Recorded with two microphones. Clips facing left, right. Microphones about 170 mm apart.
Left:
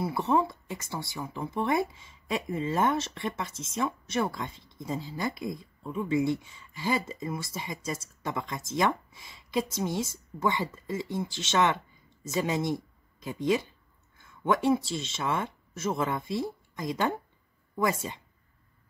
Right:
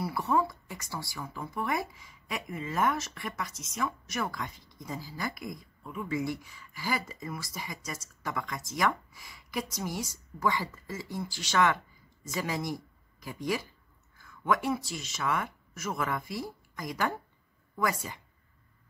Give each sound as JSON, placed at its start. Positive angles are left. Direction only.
{"t": 0.0, "sound": "speech", "side_deg": 25}